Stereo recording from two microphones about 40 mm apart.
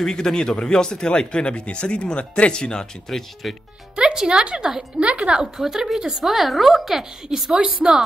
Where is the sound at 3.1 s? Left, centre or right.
Centre.